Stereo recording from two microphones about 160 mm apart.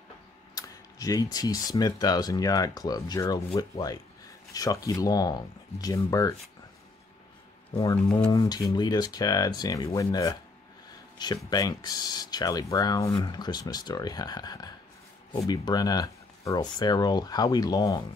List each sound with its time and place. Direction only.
0.6 s speech: 20° left (ahead or behind)
7.8 s speech: 20° left (ahead or behind)